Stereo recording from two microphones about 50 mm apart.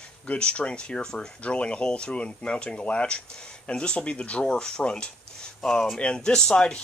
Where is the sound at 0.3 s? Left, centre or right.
Left.